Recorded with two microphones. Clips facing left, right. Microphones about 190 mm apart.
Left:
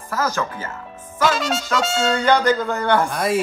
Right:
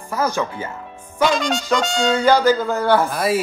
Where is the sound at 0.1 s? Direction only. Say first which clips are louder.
Right 2 dB; 15° right (ahead or behind).